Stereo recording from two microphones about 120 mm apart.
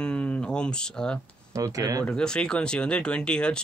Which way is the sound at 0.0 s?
10° left (ahead or behind).